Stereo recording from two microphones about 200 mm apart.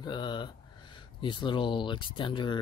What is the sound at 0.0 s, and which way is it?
Speech, 20° left (ahead or behind).